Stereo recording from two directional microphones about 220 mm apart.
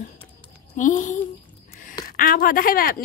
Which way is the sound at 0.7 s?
35° left (ahead or behind).